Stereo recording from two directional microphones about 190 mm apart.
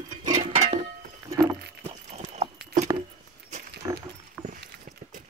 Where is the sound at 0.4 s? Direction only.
35° right (ahead or behind).